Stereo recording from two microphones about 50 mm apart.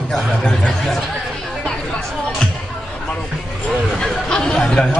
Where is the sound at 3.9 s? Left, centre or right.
Centre.